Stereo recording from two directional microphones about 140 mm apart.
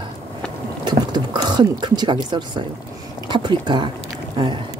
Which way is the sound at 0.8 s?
30° right (ahead or behind).